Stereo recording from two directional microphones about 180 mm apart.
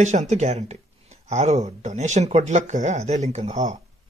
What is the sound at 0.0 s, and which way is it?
Speech, 40° right (ahead or behind).